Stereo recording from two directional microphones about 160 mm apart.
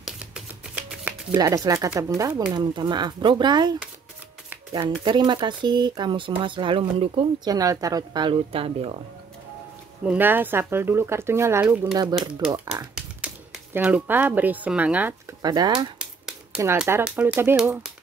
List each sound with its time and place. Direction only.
1.3 s a woman's voice: 20° right (ahead or behind)
5.0 s a woman's voice: 25° right (ahead or behind)
7.4 s a woman's voice: 20° right (ahead or behind)
10.0 s speech: 10° right (ahead or behind)
12.9 s speech: 5° right (ahead or behind)
15.4 s a woman's voice: 25° right (ahead or behind)
16.0 s a sound: 5° right (ahead or behind)
16.8 s speech: 10° right (ahead or behind)